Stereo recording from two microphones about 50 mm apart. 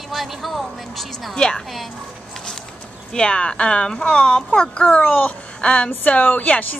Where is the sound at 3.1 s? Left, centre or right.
Centre.